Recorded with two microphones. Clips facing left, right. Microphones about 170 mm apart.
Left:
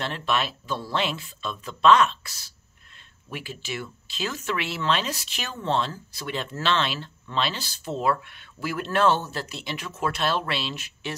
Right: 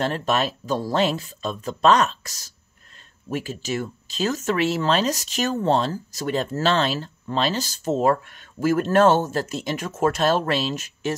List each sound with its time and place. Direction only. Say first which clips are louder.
0.0 s speech: right 5 dB; 40° right (ahead or behind)